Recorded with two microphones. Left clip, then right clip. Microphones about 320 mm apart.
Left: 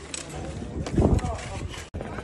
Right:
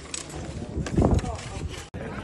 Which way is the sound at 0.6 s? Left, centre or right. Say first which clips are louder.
Even; centre.